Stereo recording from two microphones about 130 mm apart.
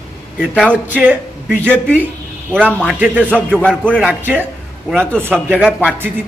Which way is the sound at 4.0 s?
15° right (ahead or behind).